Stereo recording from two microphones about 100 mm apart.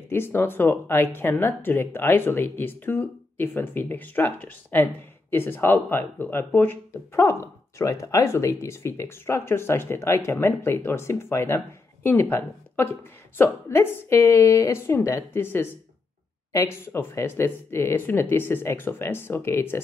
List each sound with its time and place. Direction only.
0.1 s speech: 20° left (ahead or behind)